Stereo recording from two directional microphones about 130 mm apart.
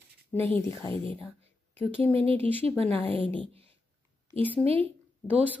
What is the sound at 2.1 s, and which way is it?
A woman's voice, 45° right (ahead or behind).